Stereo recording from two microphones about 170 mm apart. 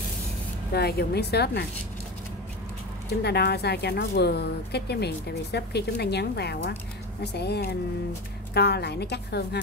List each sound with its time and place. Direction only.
0.7 s speech: 70° left (ahead or behind)
3.1 s speech: 70° left (ahead or behind)